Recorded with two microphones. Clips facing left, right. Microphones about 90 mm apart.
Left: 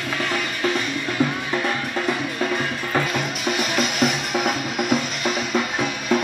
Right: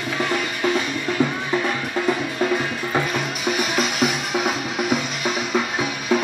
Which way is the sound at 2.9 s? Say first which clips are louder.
Even; 5° right (ahead or behind).